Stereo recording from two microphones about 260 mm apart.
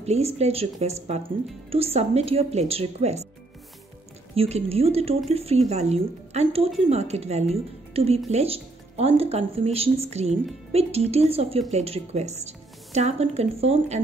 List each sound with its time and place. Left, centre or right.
0.0 s speech: right
4.4 s speech: right